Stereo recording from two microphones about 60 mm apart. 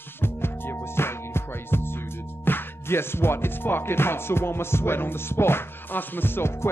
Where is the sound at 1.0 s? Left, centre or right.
Left.